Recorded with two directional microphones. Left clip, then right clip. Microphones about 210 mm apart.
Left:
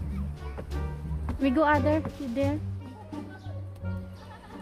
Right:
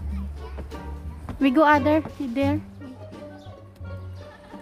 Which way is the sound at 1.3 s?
20° right (ahead or behind).